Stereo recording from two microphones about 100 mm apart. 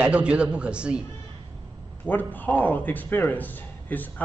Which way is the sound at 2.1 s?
15° left (ahead or behind).